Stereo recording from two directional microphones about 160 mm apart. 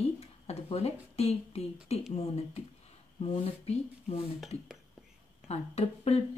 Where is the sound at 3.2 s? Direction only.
35° left (ahead or behind).